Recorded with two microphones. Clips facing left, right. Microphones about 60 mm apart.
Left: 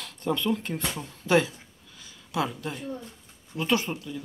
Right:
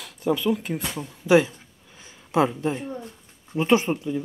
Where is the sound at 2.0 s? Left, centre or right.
Right.